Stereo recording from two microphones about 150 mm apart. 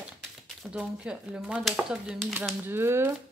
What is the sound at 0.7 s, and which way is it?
Speech, 5° right (ahead or behind).